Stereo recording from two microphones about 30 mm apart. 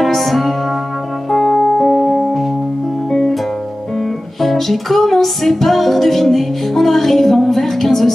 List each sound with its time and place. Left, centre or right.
0.0 s music: centre
1.9 s music: centre
3.1 s music: centre
4.4 s music: centre